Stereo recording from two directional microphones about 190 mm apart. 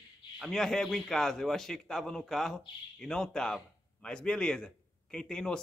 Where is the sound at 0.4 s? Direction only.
5° left (ahead or behind).